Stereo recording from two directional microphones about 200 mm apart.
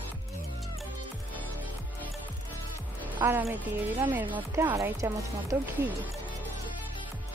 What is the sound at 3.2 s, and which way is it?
Speech, 10° right (ahead or behind).